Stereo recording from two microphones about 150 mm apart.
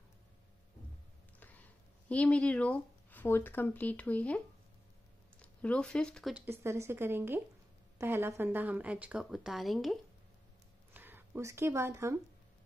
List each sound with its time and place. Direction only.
1.4 s speech: 10° left (ahead or behind)
5.4 s speech: 10° left (ahead or behind)
6.3 s a woman's voice: 15° right (ahead or behind)
10.9 s speech: 15° right (ahead or behind)